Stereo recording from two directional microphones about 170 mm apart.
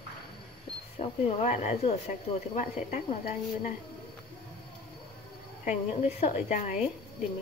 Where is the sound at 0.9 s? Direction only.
35° left (ahead or behind).